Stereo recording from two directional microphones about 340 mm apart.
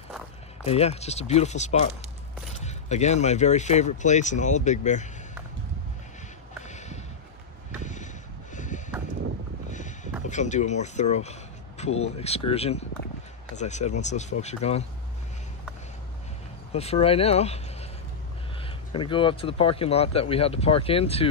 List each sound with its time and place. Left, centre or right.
0.7 s speech: centre
6.6 s a sound: left
9.7 s boat: left
10.2 s speech: left
16.7 s speech: centre
18.9 s speech: centre